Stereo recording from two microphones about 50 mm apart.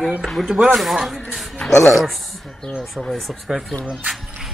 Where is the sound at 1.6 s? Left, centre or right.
Centre.